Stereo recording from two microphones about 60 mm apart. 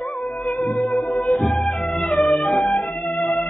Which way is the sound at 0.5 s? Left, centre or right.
Left.